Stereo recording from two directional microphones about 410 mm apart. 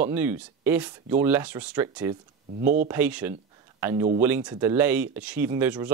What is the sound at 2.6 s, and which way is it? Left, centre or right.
Speech, centre.